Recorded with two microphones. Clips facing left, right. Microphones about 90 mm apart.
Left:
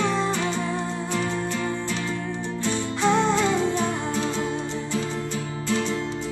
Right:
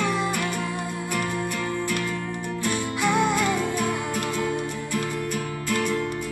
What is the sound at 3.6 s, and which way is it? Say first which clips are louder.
Music: left 1 dB; 55° right (ahead or behind).